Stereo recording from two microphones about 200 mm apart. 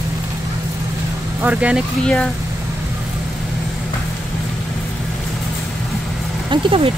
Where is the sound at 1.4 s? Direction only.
5° right (ahead or behind).